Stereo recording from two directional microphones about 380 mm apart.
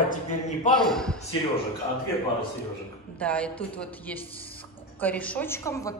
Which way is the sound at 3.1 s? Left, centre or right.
Centre.